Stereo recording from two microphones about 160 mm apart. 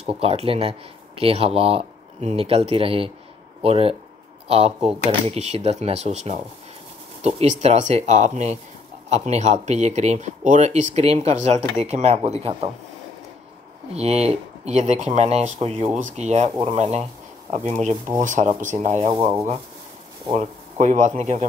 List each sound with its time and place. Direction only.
0.0 s speech: 40° right (ahead or behind)
13.9 s speech: 40° right (ahead or behind)
20.3 s speech: 45° right (ahead or behind)